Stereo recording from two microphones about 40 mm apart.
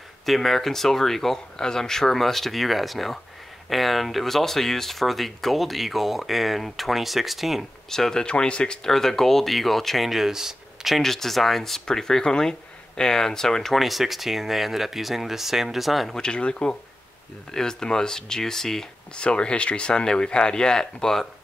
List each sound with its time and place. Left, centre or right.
0.2 s speech: centre
7.9 s speech: centre
8.3 s speech: left
8.8 s speech: centre
11.0 s speech: centre
16.1 s speech: centre
19.1 s speech: left